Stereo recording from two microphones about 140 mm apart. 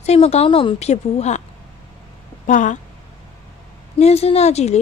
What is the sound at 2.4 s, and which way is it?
Speech, 65° left (ahead or behind).